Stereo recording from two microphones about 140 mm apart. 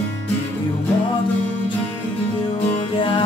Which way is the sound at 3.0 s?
35° left (ahead or behind).